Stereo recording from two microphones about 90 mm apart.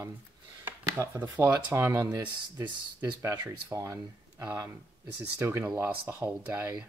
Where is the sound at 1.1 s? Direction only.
20° right (ahead or behind).